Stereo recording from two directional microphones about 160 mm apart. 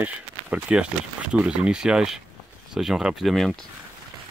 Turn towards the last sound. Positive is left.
turn(degrees=0)  # may be behind; listen again after turning